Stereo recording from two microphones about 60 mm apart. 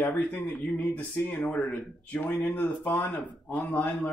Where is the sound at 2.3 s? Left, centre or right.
Centre.